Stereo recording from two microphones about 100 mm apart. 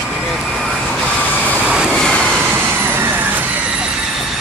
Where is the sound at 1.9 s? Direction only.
5° left (ahead or behind).